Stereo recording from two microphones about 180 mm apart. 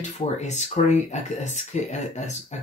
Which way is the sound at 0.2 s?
40° left (ahead or behind).